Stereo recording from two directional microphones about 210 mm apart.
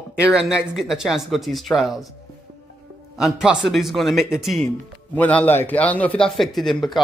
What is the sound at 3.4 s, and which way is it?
A man's voice, centre (ahead or behind).